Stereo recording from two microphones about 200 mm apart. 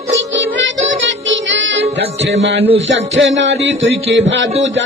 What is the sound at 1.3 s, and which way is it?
Music, 65° right (ahead or behind).